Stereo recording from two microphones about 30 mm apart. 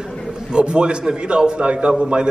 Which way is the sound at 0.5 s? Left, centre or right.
Right.